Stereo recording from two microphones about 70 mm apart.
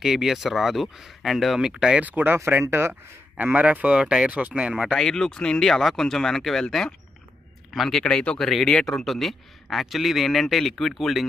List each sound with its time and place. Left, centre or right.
0.0 s a man's voice: centre
2.0 s speech: right
2.3 s speech: right; by 4.9 s centre
4.9 s a man's voice: centre
8.0 s a man's voice: centre